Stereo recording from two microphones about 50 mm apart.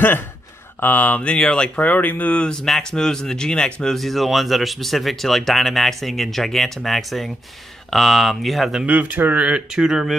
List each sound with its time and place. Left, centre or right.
0.7 s speech: left
1.3 s speech: centre
1.8 s speech: left
2.5 s speech: centre
3.9 s speech: centre
8.8 s speech: right; by 10.1 s centre